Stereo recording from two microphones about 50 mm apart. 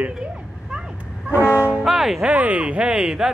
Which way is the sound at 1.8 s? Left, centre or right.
Centre.